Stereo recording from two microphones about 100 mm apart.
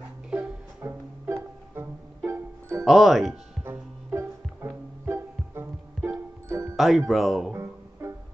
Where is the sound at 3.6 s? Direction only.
25° right (ahead or behind).